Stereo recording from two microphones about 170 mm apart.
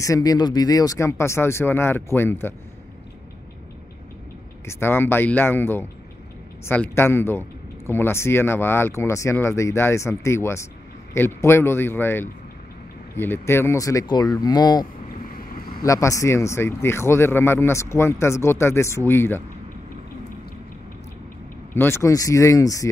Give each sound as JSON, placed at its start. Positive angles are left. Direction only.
{"t": 0.0, "sound": "speech", "side_deg": 20}
{"t": 4.6, "sound": "speech", "side_deg": 15}
{"t": 15.3, "sound": "boat", "side_deg": 60}
{"t": 15.8, "sound": "speech", "side_deg": 20}
{"t": 21.7, "sound": "speech", "side_deg": 15}